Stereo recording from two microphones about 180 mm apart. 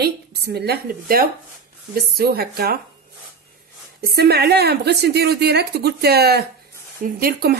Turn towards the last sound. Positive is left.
turn(degrees=-55)  # may be behind; listen again after turning